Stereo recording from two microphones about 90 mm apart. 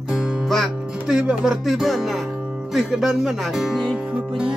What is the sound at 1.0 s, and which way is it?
Speech, 10° right (ahead or behind).